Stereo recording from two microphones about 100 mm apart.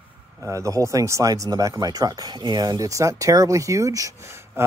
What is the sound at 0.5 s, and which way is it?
Speech, 30° right (ahead or behind).